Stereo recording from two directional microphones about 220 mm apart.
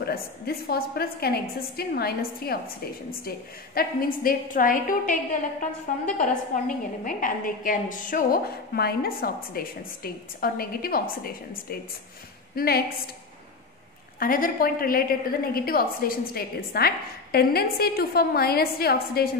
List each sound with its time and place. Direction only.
0.0 s a woman's voice: 45° left (ahead or behind)
14.2 s a woman's voice: 40° left (ahead or behind)